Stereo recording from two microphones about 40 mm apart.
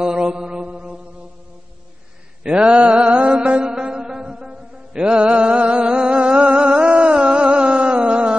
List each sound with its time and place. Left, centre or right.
0.0 s mantra: right
2.4 s mantra: right
3.8 s music: right
6.0 s a sound: right